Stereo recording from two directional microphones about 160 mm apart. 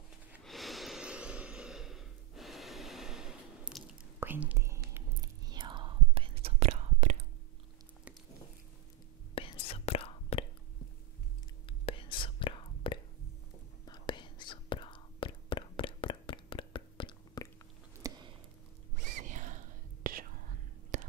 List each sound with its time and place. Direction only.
0.4 s a sound: centre (ahead or behind); by 4.8 s 15° right (ahead or behind)
5.2 s whispering: 25° right (ahead or behind); by 7.2 s 45° right (ahead or behind)
9.3 s whispering: 35° left (ahead or behind)
11.8 s whispering: 35° left (ahead or behind)
18.0 s a sound: 20° right (ahead or behind)
18.9 s whispering: 50° right (ahead or behind)
20.9 s whispering: 50° right (ahead or behind)